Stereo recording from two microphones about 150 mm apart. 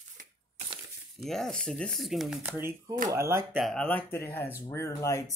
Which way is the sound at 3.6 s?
Centre (ahead or behind).